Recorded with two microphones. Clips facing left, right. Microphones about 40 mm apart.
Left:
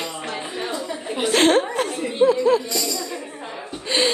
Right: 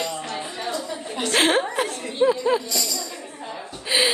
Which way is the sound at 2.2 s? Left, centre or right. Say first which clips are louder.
Left 3 dB; centre.